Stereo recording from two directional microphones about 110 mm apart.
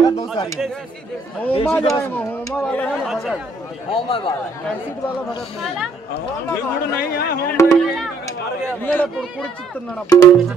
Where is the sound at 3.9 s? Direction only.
50° left (ahead or behind).